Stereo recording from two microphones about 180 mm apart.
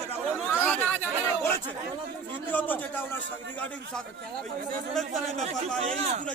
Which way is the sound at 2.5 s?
10° left (ahead or behind).